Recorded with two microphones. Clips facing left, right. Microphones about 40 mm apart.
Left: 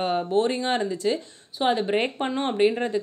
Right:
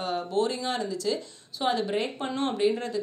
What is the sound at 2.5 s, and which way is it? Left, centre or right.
Speech, left.